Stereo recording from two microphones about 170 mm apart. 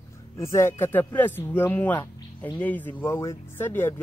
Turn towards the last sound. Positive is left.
turn(degrees=10)  # may be behind; listen again after turning